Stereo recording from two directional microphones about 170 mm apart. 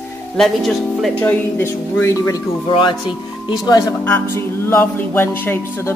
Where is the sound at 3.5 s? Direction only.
25° left (ahead or behind).